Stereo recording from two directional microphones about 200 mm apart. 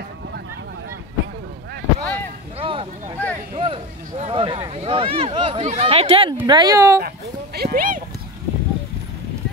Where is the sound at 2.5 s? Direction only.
25° right (ahead or behind).